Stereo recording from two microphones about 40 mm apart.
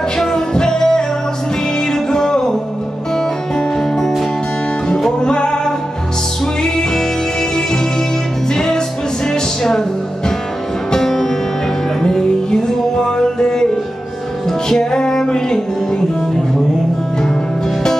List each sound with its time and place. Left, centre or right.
0.2 s music: centre
5.2 s music: left
8.5 s music: centre
14.7 s music: centre